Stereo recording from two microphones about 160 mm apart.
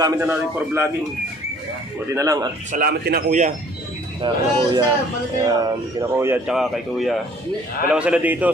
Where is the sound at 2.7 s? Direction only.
75° right (ahead or behind).